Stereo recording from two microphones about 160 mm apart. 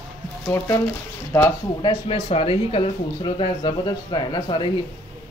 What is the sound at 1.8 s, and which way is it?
Speech, 35° left (ahead or behind).